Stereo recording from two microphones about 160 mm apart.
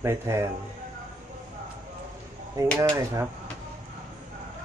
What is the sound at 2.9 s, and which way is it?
Speech, 20° right (ahead or behind).